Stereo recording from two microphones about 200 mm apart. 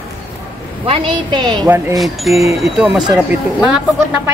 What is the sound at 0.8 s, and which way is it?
Speech, 25° right (ahead or behind).